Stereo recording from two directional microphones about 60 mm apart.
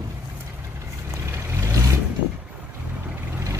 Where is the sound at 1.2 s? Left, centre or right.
Right.